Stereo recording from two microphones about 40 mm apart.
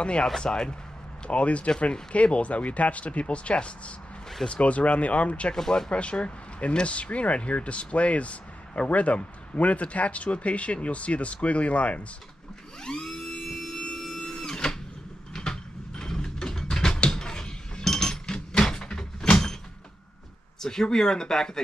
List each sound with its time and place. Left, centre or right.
0.0 s speech: left
1.3 s speech: left
5.5 s speech: centre
5.9 s speech: left
12.8 s a sound: centre
13.7 s printer: centre
15.3 s mechanisms: centre
17.8 s chink: centre
18.6 s a sound: centre
20.6 s speech: centre